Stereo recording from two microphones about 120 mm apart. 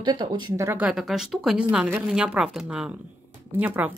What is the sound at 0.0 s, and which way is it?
Speech, 40° right (ahead or behind).